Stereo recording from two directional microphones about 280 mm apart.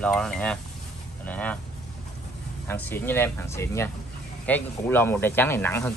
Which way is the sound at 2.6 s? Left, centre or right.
Centre.